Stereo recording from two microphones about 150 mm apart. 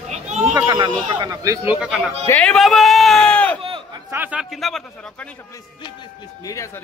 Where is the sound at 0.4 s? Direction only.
10° right (ahead or behind).